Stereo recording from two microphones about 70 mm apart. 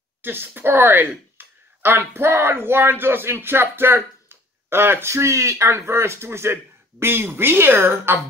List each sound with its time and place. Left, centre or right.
0.2 s speech: right